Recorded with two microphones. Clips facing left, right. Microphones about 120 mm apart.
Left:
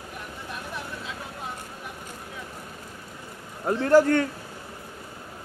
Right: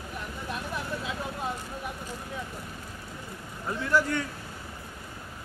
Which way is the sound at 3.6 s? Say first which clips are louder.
Left 8 dB; 50° left (ahead or behind).